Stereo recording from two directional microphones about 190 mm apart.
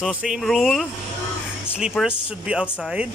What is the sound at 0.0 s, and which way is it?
Speech, 5° right (ahead or behind).